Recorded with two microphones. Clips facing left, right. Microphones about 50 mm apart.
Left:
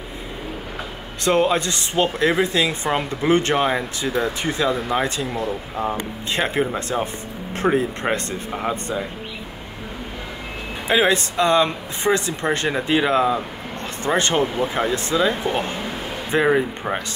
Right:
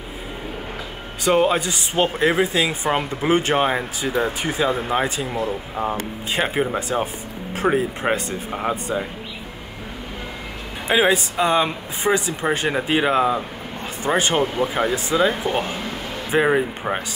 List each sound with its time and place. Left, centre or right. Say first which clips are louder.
1.2 s speech: even; centre
4.6 s speech: left 1 dB; right
4.9 s speech: even; centre
5.8 s speech: even; right
6.3 s speech: even; centre
10.9 s speech: even; centre